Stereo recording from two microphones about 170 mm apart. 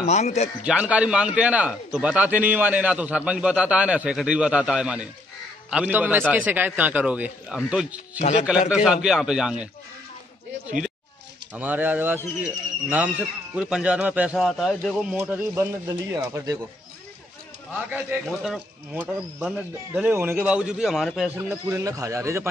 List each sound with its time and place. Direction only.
0.0 s speech: 40° left (ahead or behind)
0.7 s a man's voice: 5° right (ahead or behind)
8.2 s speech: 40° left (ahead or behind)
8.5 s speech: 5° right (ahead or behind)
11.5 s a man's voice: 10° right (ahead or behind)
13.6 s speech: 5° right (ahead or behind)
17.7 s a man's voice: 10° right (ahead or behind)
21.4 s a man's voice: 15° right (ahead or behind)